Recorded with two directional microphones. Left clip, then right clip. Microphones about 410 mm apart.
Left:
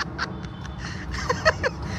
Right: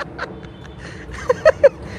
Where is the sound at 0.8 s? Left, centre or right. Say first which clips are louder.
Even; centre.